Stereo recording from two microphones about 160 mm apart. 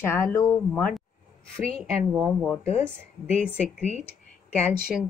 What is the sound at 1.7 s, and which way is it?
Speech, centre (ahead or behind).